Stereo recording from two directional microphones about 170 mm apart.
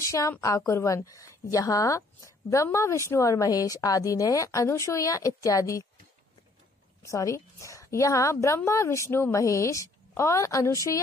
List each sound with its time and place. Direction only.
0.0 s a woman's voice: 15° left (ahead or behind)
7.0 s a woman's voice: 20° left (ahead or behind)